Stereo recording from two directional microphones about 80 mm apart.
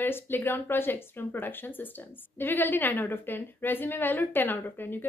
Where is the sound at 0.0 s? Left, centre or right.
Left.